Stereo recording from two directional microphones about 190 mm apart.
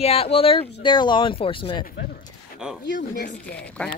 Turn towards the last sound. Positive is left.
turn(degrees=5)  # may be behind; listen again after turning